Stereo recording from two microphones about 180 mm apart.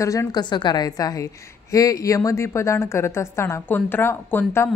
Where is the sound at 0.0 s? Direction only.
15° left (ahead or behind).